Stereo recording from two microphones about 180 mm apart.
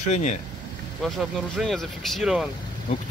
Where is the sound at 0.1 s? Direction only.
40° left (ahead or behind).